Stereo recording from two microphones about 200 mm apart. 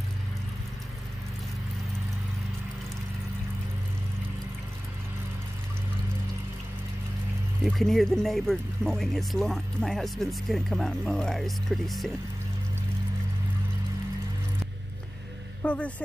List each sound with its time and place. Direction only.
7.6 s speech: centre (ahead or behind)
15.6 s a man's voice: 5° left (ahead or behind)